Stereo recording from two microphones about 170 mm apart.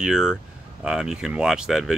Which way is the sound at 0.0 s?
5° right (ahead or behind).